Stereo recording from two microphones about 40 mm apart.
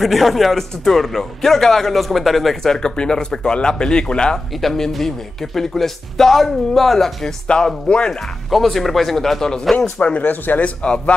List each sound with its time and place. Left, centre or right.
0.0 s a man's voice: centre; by 4.4 s left
4.6 s a man's voice: centre
10.0 s speech: left
10.6 s speech: left